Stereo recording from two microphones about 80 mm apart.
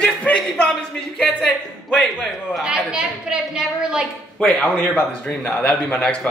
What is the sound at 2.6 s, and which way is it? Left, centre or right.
A woman's voice, centre.